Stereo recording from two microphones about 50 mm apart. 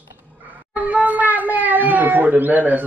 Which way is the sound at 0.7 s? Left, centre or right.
Right.